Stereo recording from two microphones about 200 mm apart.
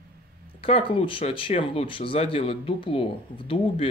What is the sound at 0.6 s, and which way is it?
Speech, 25° left (ahead or behind).